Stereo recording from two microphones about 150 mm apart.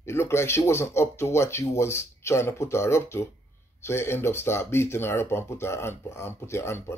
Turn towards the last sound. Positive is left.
turn(degrees=15)  # may be behind; listen again after turning